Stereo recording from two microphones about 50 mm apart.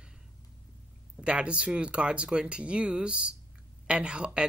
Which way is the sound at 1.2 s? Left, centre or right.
Right.